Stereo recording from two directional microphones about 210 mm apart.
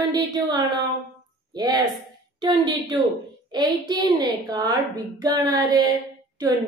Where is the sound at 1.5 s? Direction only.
20° right (ahead or behind).